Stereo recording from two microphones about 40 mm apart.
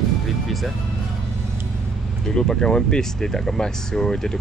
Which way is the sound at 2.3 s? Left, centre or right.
Centre.